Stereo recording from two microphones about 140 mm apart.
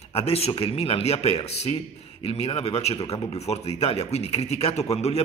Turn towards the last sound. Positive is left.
turn(degrees=50)  # may be behind; listen again after turning